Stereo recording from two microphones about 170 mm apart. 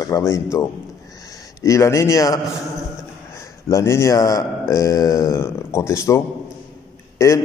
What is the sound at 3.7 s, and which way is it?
A man's voice, 15° left (ahead or behind).